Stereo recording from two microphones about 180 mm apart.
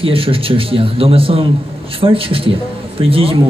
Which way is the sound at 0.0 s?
30° right (ahead or behind).